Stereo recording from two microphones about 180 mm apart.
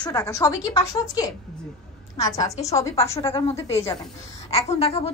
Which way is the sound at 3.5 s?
15° left (ahead or behind).